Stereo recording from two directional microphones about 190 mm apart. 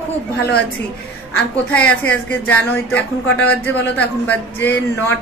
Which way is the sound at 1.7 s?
10° left (ahead or behind).